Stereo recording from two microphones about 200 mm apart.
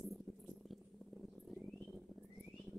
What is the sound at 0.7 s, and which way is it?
Mouse, centre (ahead or behind).